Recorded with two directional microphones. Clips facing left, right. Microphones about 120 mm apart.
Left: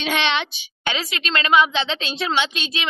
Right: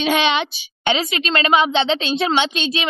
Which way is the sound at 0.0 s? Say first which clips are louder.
Right 4 dB; 10° right (ahead or behind).